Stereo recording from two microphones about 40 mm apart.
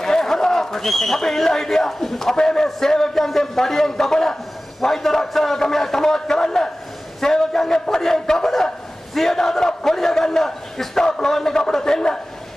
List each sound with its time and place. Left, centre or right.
0.0 s a man's voice: centre